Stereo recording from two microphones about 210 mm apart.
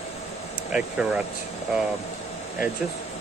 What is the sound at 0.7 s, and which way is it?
Speech, 5° right (ahead or behind).